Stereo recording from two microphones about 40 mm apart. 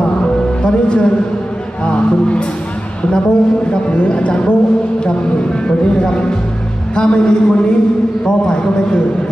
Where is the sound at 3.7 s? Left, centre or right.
Left.